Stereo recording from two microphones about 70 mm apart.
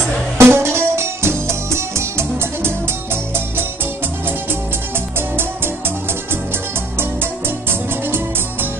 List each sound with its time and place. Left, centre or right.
0.4 s music: right
7.0 s music: right